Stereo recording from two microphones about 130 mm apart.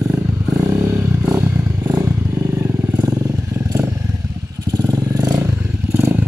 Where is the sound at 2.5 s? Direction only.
20° right (ahead or behind).